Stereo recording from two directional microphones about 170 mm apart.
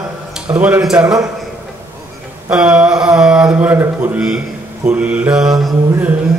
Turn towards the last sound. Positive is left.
turn(degrees=-10)  # may be behind; listen again after turning